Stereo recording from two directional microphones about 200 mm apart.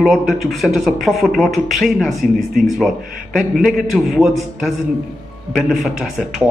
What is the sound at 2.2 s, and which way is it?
Speech, 45° right (ahead or behind).